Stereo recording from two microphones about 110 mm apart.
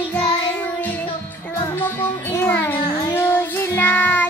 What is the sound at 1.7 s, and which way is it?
Music, 20° left (ahead or behind).